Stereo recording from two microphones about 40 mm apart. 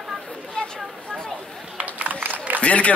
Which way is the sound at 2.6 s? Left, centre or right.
Left.